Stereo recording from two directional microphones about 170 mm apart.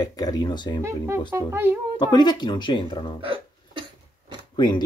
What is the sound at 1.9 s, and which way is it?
Speech, 25° left (ahead or behind).